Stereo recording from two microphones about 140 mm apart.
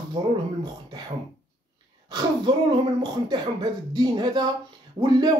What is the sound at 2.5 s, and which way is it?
Speech, 30° right (ahead or behind).